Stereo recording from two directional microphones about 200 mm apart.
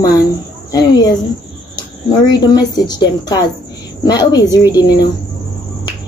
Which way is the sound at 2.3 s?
20° left (ahead or behind).